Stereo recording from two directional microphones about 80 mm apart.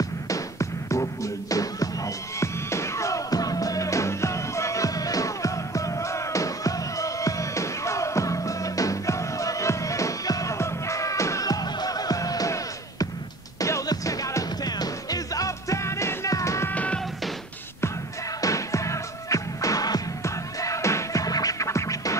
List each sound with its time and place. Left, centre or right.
0.0 s music: left
16.7 s music: centre
18.4 s music: left